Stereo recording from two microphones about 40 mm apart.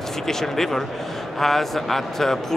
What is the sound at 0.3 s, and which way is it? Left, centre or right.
A man's voice, centre.